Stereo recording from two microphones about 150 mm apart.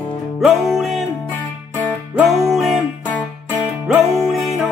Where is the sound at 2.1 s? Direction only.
Centre (ahead or behind).